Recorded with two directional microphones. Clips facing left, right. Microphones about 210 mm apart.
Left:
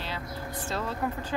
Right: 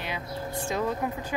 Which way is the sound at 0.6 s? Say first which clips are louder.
Right 3 dB; 15° right (ahead or behind).